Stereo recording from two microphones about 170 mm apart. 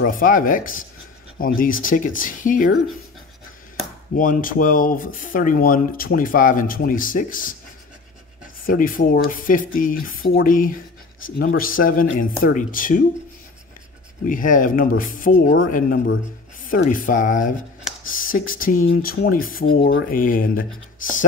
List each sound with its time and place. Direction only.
0.0 s speech: 55° left (ahead or behind)
4.1 s speech: 55° left (ahead or behind)
8.6 s speech: 55° left (ahead or behind)
14.2 s speech: 50° left (ahead or behind)
16.8 s speech: 50° left (ahead or behind)